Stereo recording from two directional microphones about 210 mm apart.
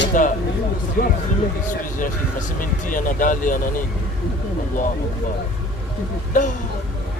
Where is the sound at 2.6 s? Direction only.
40° left (ahead or behind).